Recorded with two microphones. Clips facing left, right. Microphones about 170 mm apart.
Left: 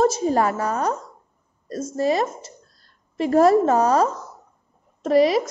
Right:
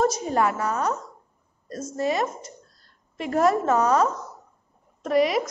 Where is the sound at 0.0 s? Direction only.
30° left (ahead or behind).